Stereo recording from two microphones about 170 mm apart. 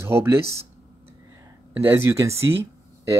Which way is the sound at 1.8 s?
15° right (ahead or behind).